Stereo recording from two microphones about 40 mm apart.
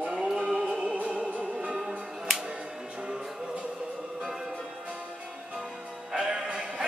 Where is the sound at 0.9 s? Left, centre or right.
Right.